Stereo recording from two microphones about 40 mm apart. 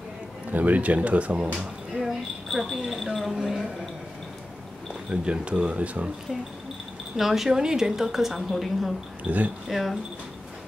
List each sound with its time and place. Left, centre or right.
0.5 s speech: right
1.5 s speech: centre
2.4 s speech: centre
5.1 s speech: right
7.2 s a woman's voice: centre
9.2 s speech: right
9.7 s speech: centre